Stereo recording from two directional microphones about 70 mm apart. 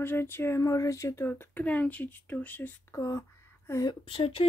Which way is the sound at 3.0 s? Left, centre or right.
Left.